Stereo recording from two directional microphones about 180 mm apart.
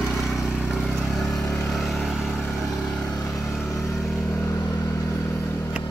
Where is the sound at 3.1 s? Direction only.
20° left (ahead or behind).